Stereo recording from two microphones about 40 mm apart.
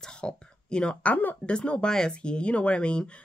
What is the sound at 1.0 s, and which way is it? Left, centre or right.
Speech, left.